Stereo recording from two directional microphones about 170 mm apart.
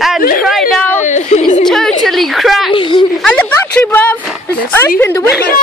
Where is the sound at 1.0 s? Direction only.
45° left (ahead or behind).